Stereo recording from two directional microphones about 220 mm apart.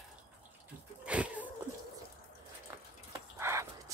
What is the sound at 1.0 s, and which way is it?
Cat, 5° right (ahead or behind).